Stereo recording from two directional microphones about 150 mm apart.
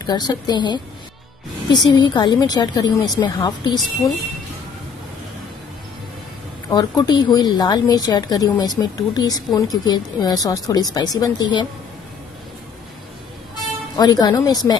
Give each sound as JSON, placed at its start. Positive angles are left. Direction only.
{"t": 0.0, "sound": "a woman's voice", "side_deg": 30}
{"t": 6.7, "sound": "a woman's voice", "side_deg": 30}
{"t": 13.9, "sound": "a woman's voice", "side_deg": 25}